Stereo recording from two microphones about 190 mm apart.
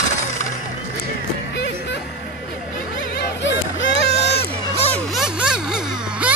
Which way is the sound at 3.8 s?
70° left (ahead or behind).